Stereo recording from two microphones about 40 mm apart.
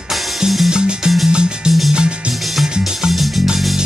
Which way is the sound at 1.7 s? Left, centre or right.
Centre.